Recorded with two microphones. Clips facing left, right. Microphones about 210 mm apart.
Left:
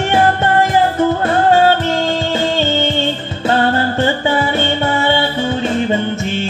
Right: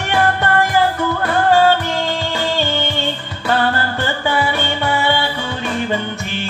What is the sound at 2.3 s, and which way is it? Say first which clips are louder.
Music: left 3 dB; 25° left (ahead or behind).